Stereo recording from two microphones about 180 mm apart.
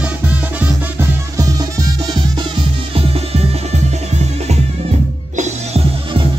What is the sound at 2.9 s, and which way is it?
Music, 35° right (ahead or behind).